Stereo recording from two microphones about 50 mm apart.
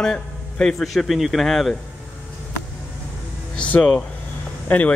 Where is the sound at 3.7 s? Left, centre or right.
Left.